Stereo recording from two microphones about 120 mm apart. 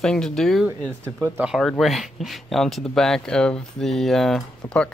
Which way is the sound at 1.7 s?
Centre (ahead or behind).